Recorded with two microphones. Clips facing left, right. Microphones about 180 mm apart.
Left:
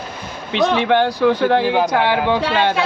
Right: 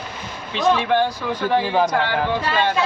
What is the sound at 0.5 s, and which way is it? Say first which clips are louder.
Speech: left 3 dB; 70° left (ahead or behind).